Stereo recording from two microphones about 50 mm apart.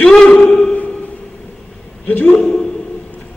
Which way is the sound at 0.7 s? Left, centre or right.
Left.